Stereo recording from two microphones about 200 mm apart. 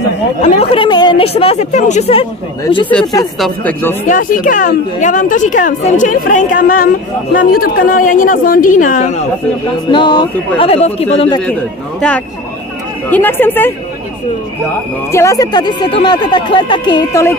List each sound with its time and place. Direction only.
0.4 s speech: 30° left (ahead or behind)
3.3 s speech: 5° left (ahead or behind)
4.1 s a woman's voice: 40° left (ahead or behind)
9.8 s speech: 25° left (ahead or behind)
13.1 s speech: 10° left (ahead or behind)
15.0 s speech: 15° left (ahead or behind)